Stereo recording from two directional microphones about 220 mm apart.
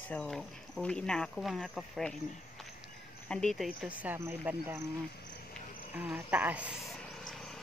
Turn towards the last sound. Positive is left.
turn(degrees=0)  # may be behind; listen again after turning